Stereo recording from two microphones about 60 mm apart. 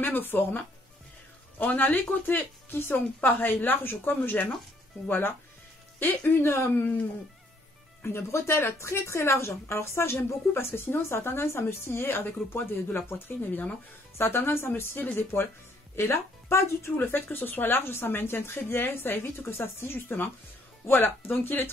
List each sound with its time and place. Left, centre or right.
0.0 s a woman's voice: left
1.6 s a woman's voice: left
8.0 s a woman's voice: left
16.9 s a woman's voice: left